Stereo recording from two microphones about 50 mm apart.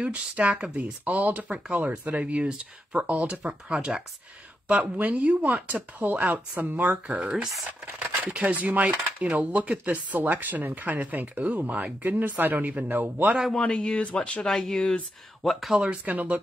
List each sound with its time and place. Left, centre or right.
0.0 s speech: right
7.2 s speech: centre
7.8 s speech: right
13.6 s speech: left
14.4 s speech: centre
14.8 s speech: left
15.7 s speech: right